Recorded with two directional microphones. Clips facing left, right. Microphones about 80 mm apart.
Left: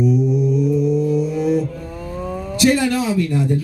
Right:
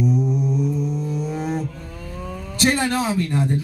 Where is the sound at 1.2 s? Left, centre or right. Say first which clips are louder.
Left 7 dB; right.